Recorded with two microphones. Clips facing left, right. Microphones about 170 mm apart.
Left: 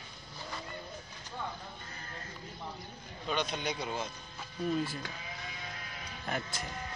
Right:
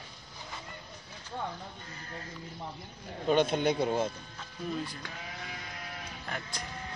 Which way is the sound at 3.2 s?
50° right (ahead or behind).